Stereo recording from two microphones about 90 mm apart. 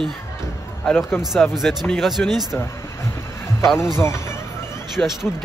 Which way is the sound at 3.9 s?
30° left (ahead or behind).